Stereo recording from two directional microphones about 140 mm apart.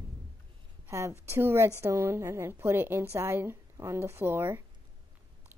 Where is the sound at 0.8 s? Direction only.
20° right (ahead or behind).